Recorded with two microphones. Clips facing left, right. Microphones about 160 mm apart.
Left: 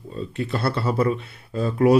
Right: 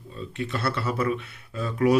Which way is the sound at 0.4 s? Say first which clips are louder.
Left 3 dB; 35° left (ahead or behind).